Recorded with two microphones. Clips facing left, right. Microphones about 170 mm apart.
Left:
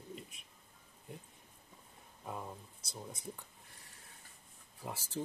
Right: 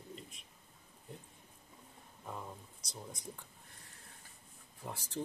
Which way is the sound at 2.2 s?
10° left (ahead or behind).